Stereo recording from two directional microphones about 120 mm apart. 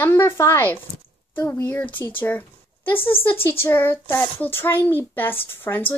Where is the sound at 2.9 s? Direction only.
15° left (ahead or behind).